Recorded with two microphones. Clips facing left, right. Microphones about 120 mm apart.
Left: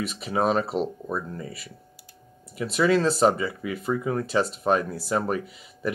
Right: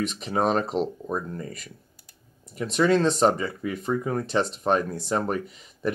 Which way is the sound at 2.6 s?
5° left (ahead or behind).